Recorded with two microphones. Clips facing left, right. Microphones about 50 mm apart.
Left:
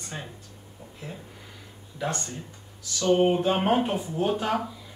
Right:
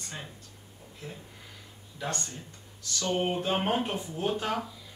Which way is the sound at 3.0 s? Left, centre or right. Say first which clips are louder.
Left 8 dB; left.